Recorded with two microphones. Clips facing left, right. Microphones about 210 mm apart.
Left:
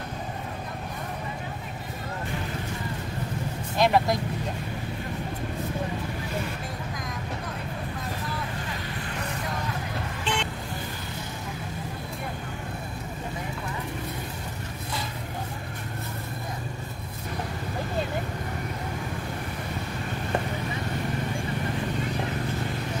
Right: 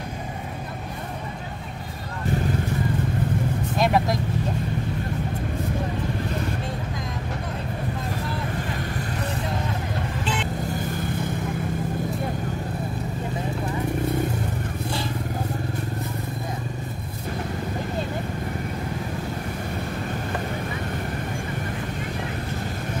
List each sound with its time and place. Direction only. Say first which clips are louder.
3.7 s vehicle: even; centre (ahead or behind)